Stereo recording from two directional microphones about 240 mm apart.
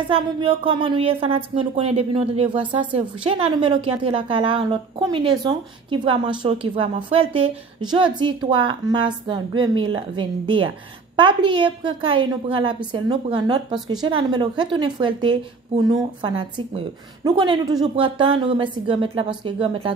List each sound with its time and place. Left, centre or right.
0.1 s a woman's voice: right